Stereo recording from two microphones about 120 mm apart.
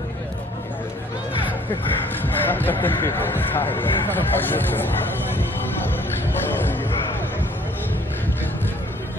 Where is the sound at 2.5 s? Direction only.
15° left (ahead or behind).